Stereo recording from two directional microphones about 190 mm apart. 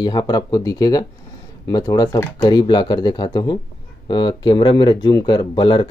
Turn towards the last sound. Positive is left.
turn(degrees=25)  # may be behind; listen again after turning